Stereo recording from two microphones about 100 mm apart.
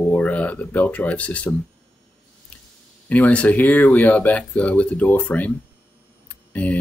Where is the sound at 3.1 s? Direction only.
15° left (ahead or behind).